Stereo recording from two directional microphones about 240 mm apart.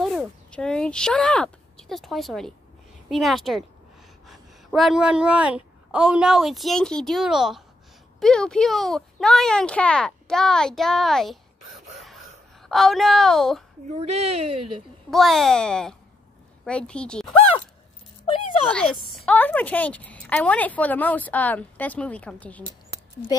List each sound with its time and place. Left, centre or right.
0.0 s a woman's voice: centre
12.6 s speech: centre
13.9 s speech: right
15.0 s speech: centre
18.7 s a woman's voice: centre